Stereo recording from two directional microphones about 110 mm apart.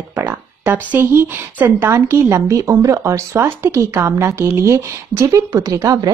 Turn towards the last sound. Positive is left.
turn(degrees=-30)  # may be behind; listen again after turning